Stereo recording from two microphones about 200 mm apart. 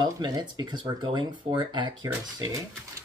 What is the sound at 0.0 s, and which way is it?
Speech, 20° right (ahead or behind).